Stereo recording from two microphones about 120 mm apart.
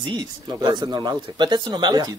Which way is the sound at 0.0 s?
35° right (ahead or behind).